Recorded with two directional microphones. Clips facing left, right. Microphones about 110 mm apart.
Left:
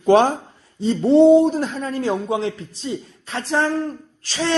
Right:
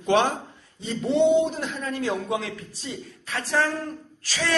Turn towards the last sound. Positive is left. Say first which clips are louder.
# left 5 dB
turn(degrees=30)  # may be behind; listen again after turning